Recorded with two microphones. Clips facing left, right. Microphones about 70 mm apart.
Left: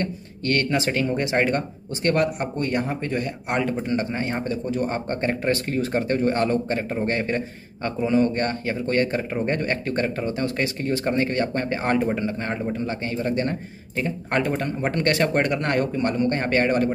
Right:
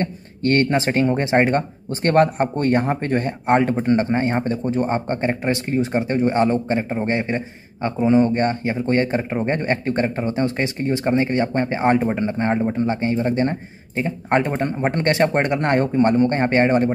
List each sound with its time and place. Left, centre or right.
0.0 s speech: right